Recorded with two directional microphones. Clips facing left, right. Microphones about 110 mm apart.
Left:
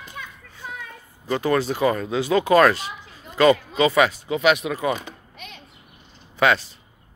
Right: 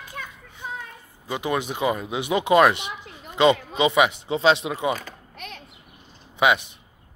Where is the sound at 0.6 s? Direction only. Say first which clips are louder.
Right 2 dB; 20° right (ahead or behind).